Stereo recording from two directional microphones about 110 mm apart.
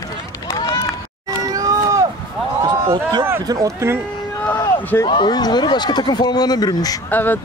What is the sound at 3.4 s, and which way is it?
Speech, 35° right (ahead or behind).